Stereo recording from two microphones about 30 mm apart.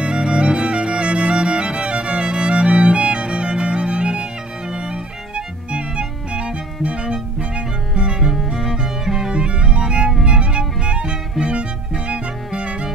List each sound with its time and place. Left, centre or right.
0.0 s music: right
8.5 s music: centre
9.3 s music: right